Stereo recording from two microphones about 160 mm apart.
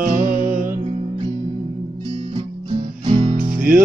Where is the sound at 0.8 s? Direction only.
40° right (ahead or behind).